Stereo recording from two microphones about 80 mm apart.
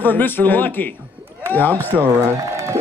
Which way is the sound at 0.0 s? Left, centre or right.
Left.